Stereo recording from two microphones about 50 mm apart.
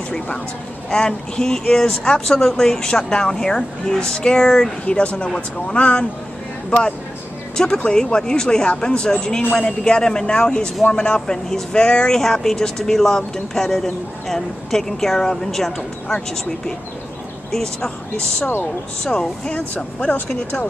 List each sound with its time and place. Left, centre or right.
0.8 s speech: centre
7.5 s speech: centre
17.5 s speech: centre
19.0 s speech: centre